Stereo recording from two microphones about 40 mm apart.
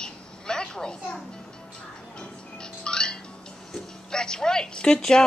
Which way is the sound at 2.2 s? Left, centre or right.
Left.